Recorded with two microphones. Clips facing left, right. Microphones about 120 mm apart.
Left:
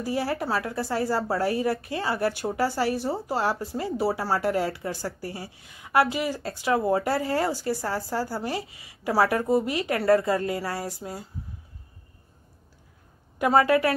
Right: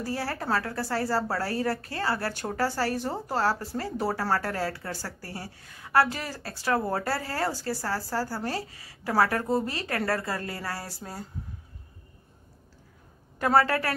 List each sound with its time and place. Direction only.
0.0 s speech: 15° left (ahead or behind)
13.4 s speech: 15° left (ahead or behind)